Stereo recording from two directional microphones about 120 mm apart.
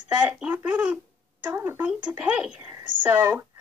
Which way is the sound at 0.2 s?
15° right (ahead or behind).